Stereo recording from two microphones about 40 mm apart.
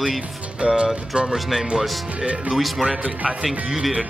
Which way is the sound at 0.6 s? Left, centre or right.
Right.